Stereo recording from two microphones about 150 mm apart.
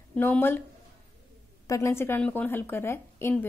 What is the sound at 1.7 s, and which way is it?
A woman's voice, 20° left (ahead or behind).